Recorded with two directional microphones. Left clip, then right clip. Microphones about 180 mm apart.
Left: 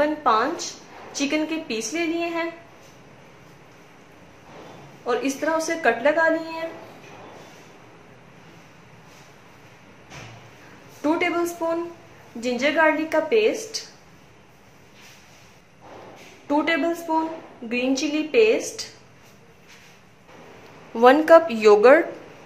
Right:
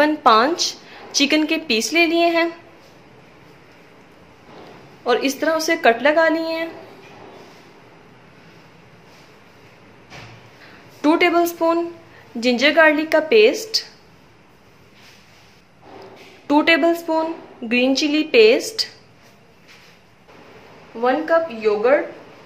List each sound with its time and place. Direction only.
0.0 s speech: 55° right (ahead or behind)
5.0 s a woman's voice: 45° right (ahead or behind)
11.0 s a woman's voice: 50° right (ahead or behind)
16.4 s a woman's voice: 45° right (ahead or behind)
21.0 s a woman's voice: 55° left (ahead or behind)